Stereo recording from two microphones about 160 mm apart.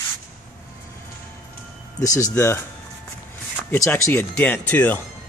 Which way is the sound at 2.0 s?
20° left (ahead or behind).